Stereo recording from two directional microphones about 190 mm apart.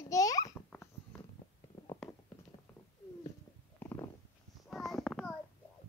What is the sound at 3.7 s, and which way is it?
Stomach rumble, 15° left (ahead or behind).